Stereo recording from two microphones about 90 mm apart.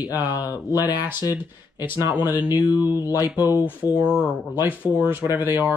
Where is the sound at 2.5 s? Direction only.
50° left (ahead or behind).